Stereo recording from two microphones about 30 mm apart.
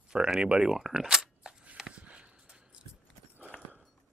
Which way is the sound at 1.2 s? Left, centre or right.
Right.